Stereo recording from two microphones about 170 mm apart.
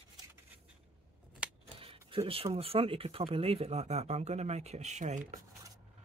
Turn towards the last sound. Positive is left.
turn(degrees=-45)  # may be behind; listen again after turning